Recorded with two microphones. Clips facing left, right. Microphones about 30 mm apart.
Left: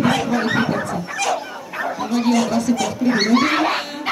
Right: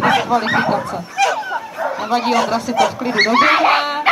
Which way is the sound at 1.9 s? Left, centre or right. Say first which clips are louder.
Right 2 dB; right.